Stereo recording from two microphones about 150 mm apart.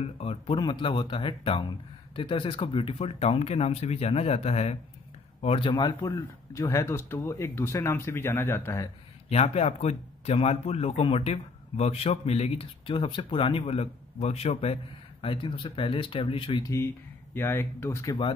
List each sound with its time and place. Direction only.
0.0 s speech: 40° left (ahead or behind); by 8.9 s 20° left (ahead or behind)
9.3 s speech: 45° left (ahead or behind)
15.2 s speech: 35° left (ahead or behind)
16.6 s speech: 15° left (ahead or behind)